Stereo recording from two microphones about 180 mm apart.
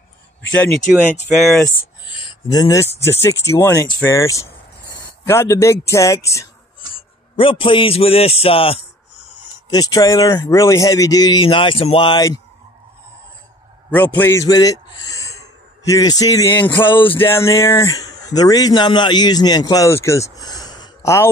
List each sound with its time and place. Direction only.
0.5 s speech: 10° left (ahead or behind)
2.0 s speech: 25° left (ahead or behind)
7.0 s a man's voice: 30° left (ahead or behind)
9.7 s speech: 20° left (ahead or behind)
13.8 s a man's voice: 10° left (ahead or behind)
16.9 s speech: 30° left (ahead or behind)
17.2 s speech: 15° left (ahead or behind)